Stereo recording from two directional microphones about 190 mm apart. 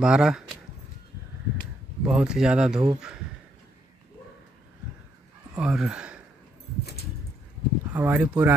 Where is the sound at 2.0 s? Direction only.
5° right (ahead or behind).